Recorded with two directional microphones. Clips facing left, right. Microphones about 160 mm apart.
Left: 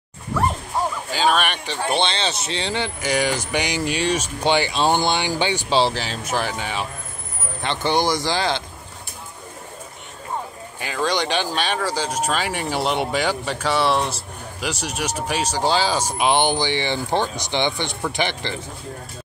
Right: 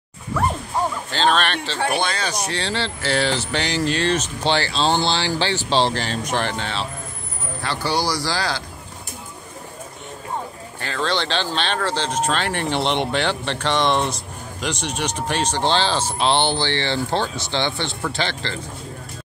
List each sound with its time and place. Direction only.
1.1 s speech: 10° left (ahead or behind)
1.9 s speech: 25° left (ahead or behind)
10.8 s speech: 10° left (ahead or behind)